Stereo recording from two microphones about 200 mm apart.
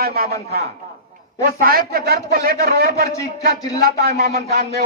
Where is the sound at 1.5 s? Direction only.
45° right (ahead or behind).